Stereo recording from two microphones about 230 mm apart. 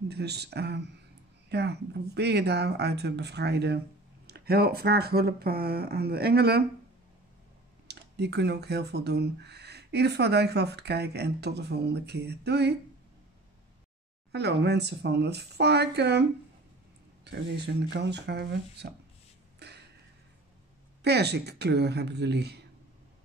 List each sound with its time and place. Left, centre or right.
0.1 s speech: right
7.9 s speech: right
14.3 s speech: right
19.6 s a sound: right
21.0 s speech: right